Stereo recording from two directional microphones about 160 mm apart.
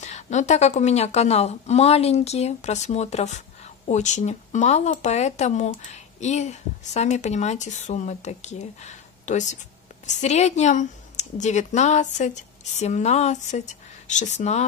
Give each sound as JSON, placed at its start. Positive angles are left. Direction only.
{"t": 0.0, "sound": "speech", "side_deg": 45}